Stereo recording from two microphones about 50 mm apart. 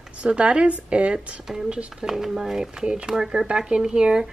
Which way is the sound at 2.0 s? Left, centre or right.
Centre.